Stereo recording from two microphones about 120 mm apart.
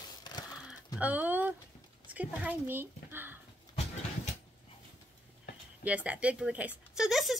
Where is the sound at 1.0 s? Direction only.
15° right (ahead or behind).